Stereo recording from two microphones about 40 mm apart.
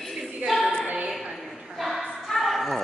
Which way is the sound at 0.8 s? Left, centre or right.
Right.